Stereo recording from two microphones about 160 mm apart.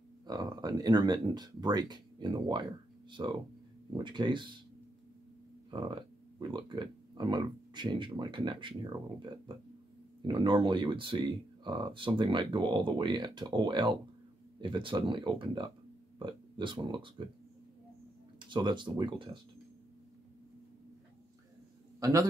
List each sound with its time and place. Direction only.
0.3 s speech: 25° right (ahead or behind)
5.7 s speech: 30° right (ahead or behind)
18.5 s speech: 30° right (ahead or behind)
22.0 s speech: 20° right (ahead or behind)